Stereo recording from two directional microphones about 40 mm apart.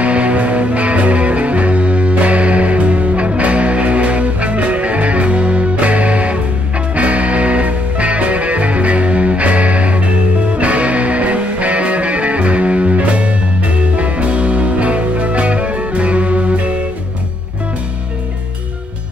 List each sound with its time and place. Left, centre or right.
0.0 s music: right